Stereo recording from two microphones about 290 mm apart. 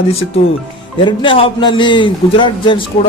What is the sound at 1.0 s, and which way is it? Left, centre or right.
A man's voice, centre.